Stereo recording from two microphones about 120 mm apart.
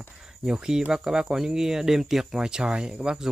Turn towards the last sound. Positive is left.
turn(degrees=-5)  # may be behind; listen again after turning